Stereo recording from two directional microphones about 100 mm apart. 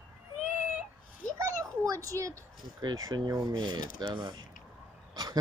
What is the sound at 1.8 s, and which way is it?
Speech, 35° right (ahead or behind).